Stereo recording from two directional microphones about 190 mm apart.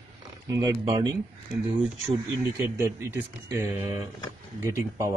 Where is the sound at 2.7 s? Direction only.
15° right (ahead or behind).